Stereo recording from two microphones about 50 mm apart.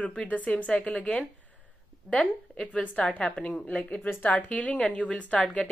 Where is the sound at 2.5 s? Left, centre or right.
Centre.